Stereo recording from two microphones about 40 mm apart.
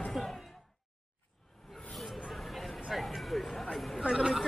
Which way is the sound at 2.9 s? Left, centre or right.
Centre.